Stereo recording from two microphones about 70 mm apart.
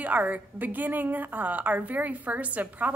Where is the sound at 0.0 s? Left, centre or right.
Right.